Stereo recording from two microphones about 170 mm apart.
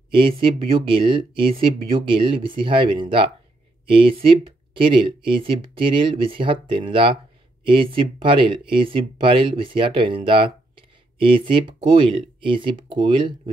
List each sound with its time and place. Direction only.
0.1 s speech: 30° right (ahead or behind)